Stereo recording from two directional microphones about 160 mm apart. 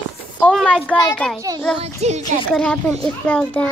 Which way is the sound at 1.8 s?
45° right (ahead or behind).